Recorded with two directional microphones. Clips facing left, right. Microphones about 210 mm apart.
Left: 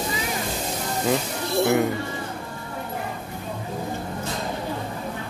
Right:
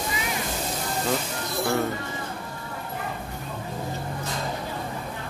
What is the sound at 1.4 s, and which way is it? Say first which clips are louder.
Music: left 6 dB; 20° left (ahead or behind).